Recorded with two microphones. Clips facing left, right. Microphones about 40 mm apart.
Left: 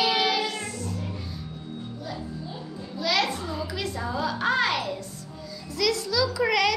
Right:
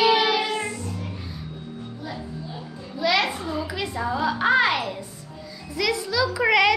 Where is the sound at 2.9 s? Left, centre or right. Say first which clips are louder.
Right 3 dB; centre.